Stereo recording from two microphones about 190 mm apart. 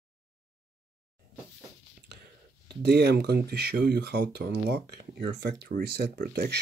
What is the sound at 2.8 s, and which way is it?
Speech, 60° right (ahead or behind).